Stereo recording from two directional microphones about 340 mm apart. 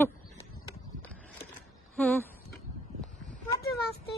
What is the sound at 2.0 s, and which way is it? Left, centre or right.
Speech, centre.